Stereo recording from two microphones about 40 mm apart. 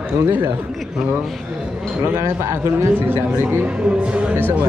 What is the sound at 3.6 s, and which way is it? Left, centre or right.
Speech, right.